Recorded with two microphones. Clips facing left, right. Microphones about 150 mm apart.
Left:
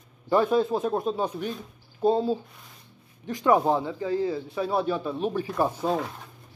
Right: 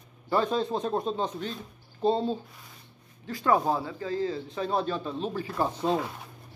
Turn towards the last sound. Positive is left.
turn(degrees=5)  # may be behind; listen again after turning